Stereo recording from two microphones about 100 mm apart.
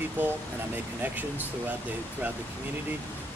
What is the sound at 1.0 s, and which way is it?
Speech, 20° right (ahead or behind).